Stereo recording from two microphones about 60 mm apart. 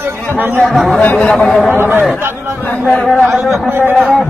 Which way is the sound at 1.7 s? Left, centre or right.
Right.